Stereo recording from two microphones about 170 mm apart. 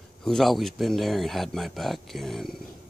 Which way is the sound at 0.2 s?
Centre (ahead or behind).